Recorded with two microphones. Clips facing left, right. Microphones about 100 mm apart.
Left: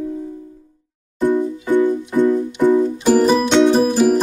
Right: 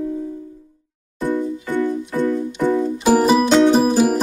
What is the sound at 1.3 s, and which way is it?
Music, 15° left (ahead or behind).